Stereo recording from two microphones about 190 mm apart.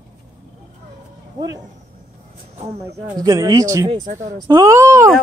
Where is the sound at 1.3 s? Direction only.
20° right (ahead or behind).